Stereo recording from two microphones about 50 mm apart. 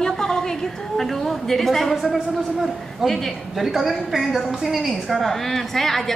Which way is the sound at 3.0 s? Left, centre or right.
Centre.